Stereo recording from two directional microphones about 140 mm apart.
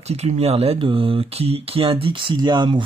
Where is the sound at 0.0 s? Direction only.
50° right (ahead or behind).